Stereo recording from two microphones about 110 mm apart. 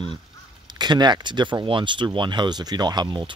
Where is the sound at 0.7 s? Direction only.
40° right (ahead or behind).